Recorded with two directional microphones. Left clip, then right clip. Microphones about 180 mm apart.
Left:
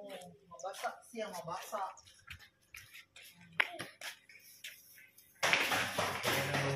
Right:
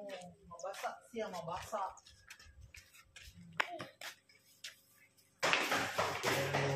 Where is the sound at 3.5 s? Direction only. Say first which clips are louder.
Left 3 dB; centre (ahead or behind).